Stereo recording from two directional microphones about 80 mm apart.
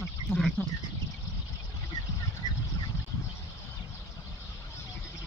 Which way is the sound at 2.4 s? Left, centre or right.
Left.